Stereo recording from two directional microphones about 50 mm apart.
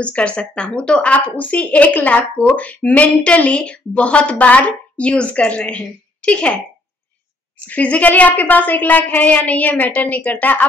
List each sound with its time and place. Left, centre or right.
0.0 s speech: left
7.6 s a woman's voice: left